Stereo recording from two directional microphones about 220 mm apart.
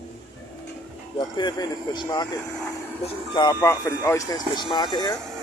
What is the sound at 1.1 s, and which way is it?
Speech, 20° left (ahead or behind).